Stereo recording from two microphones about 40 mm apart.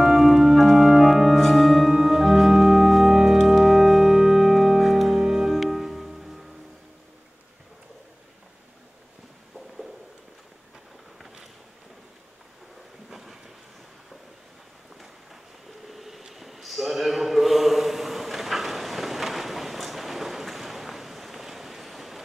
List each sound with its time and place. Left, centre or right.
0.0 s music: centre
1.4 s organ: centre
11.1 s boat: centre
13.1 s train: centre
15.9 s a sound: centre